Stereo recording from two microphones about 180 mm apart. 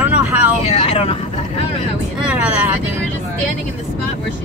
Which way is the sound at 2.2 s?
5° right (ahead or behind).